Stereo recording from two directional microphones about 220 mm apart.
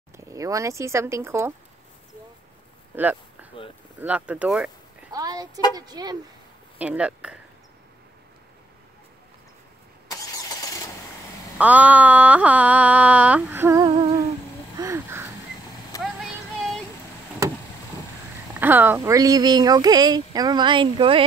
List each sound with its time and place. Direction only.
0.2 s speech: 15° right (ahead or behind)
3.6 s speech: 25° left (ahead or behind)
4.0 s speech: 5° right (ahead or behind)
5.1 s speech: 15° right (ahead or behind)
6.8 s speech: 5° right (ahead or behind)
10.0 s vehicle: 15° left (ahead or behind)
11.5 s speech: 5° right (ahead or behind)
14.8 s a sound: 10° right (ahead or behind)
15.9 s vehicle: 15° left (ahead or behind)
18.6 s speech: 10° right (ahead or behind)